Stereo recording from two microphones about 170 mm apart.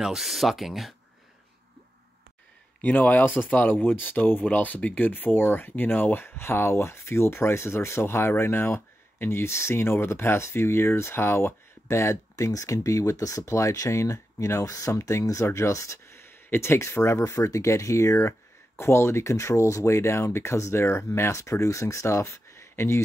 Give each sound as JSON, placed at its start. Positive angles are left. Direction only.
{"t": 0.0, "sound": "speech", "side_deg": 0}
{"t": 2.8, "sound": "speech", "side_deg": 10}